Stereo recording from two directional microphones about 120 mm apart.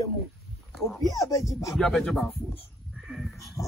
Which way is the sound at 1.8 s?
5° left (ahead or behind).